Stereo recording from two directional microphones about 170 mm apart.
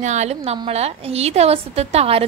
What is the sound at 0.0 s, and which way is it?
A woman's voice, 45° right (ahead or behind).